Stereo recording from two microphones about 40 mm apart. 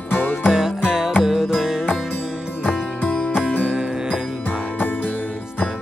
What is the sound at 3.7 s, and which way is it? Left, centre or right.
Music, centre.